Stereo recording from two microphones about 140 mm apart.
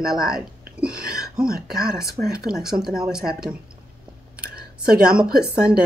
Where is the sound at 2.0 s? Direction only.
90° right.